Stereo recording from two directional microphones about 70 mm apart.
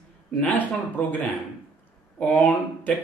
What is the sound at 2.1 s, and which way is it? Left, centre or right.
Speech, left.